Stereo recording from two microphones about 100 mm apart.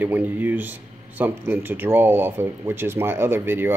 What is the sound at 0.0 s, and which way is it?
Speech, 20° right (ahead or behind).